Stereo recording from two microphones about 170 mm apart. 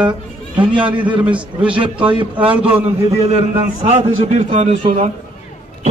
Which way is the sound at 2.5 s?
10° right (ahead or behind).